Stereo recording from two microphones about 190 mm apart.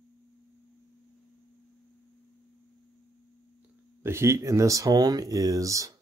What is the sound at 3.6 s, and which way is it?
Speech, 15° right (ahead or behind).